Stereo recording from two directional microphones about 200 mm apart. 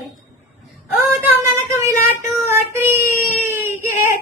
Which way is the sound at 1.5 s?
15° right (ahead or behind).